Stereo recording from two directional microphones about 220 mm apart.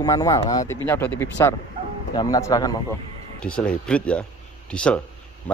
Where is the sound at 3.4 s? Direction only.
5° left (ahead or behind).